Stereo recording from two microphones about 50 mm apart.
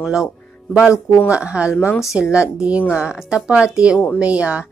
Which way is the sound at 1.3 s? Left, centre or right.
Right.